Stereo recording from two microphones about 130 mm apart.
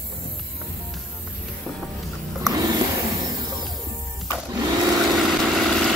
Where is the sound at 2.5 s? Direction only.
30° right (ahead or behind).